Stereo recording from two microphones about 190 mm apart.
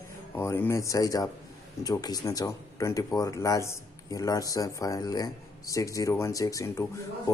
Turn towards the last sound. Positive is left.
turn(degrees=15)  # may be behind; listen again after turning